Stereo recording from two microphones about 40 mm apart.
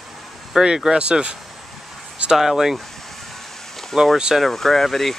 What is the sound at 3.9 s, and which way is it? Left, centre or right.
Speech, centre.